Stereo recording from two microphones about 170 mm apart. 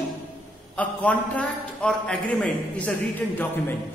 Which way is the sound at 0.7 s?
10° left (ahead or behind).